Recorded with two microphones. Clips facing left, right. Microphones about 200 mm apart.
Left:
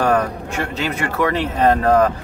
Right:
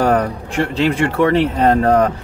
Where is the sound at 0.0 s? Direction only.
30° right (ahead or behind).